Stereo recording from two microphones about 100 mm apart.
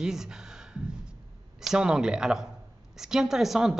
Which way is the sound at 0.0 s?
5° right (ahead or behind).